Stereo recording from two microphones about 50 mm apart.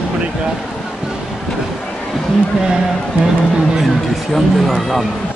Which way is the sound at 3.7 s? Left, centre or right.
Centre.